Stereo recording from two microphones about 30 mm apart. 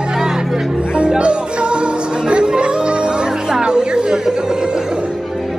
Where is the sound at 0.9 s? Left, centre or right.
Right.